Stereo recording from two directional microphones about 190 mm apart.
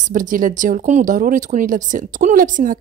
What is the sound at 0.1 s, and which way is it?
Speech, 45° right (ahead or behind).